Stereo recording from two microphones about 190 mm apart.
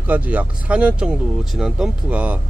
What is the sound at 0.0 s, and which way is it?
Speech, 10° right (ahead or behind).